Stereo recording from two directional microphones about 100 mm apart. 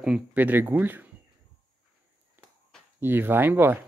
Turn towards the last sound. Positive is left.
turn(degrees=-20)  # may be behind; listen again after turning